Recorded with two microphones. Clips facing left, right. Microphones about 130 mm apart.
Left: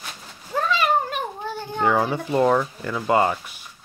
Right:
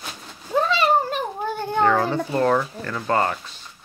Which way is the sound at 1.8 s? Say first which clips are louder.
Even; 15° left (ahead or behind).